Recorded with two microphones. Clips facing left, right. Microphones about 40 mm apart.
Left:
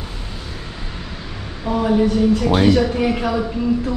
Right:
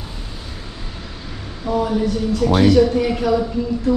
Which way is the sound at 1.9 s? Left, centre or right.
Left.